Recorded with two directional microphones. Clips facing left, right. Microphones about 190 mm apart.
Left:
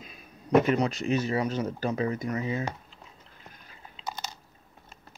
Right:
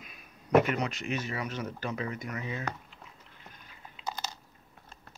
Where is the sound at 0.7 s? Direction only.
35° left (ahead or behind).